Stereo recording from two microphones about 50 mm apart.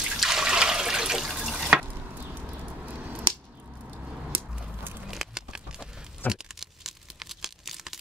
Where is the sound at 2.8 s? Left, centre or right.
Right.